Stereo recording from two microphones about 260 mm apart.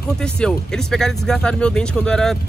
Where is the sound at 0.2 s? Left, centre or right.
Centre.